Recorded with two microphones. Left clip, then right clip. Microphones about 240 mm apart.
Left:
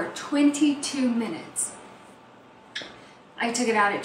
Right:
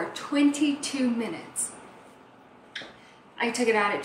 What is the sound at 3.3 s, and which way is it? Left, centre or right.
Speech, centre.